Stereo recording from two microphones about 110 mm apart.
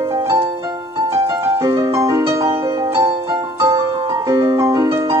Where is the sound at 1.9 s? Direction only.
25° right (ahead or behind).